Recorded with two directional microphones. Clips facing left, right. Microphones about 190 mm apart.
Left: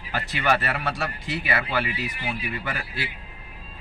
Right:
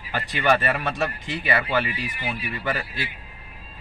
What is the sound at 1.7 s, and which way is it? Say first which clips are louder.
Speech: right 2 dB; 10° left (ahead or behind).